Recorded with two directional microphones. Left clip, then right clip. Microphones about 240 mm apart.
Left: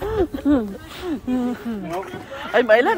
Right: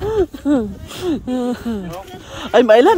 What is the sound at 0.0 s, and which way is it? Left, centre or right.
Speech, right.